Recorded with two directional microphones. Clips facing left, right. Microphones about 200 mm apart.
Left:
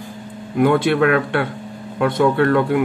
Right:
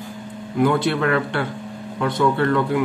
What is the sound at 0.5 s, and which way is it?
Speech, 60° left (ahead or behind).